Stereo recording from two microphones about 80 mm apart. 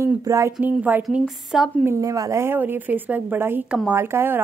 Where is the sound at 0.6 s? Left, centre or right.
Right.